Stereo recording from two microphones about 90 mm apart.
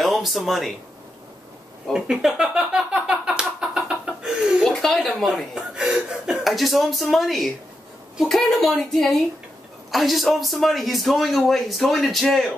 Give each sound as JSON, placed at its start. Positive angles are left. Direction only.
{"t": 0.0, "sound": "speech", "side_deg": 0}
{"t": 1.9, "sound": "a sound", "side_deg": -5}
{"t": 4.6, "sound": "a man's voice", "side_deg": 0}